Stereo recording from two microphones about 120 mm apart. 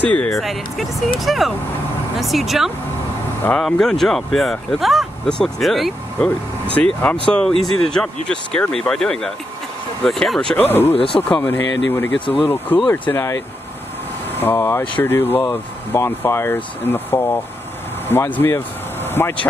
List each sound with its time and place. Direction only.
0.0 s speech: 10° left (ahead or behind)
0.3 s speech: centre (ahead or behind)
10.6 s speech: 15° left (ahead or behind)
11.0 s speech: 50° left (ahead or behind)
11.2 s speech: 15° left (ahead or behind)
14.4 s speech: 20° left (ahead or behind)